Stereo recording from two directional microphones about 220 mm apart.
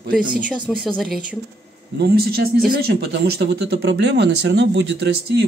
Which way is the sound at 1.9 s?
45° right (ahead or behind).